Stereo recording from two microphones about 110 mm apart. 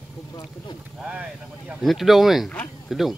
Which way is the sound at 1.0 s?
10° right (ahead or behind).